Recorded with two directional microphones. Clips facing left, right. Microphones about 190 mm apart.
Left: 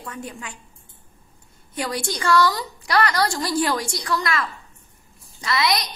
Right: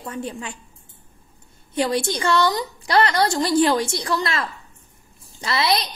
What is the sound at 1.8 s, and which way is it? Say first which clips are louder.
A woman's voice: right 5 dB; 25° right (ahead or behind).